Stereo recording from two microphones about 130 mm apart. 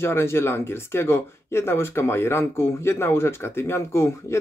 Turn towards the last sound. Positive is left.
turn(degrees=20)  # may be behind; listen again after turning